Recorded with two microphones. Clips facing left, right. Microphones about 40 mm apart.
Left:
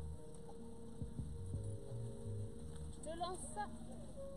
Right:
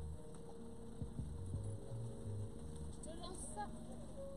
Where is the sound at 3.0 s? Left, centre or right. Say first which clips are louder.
Left 9 dB; left.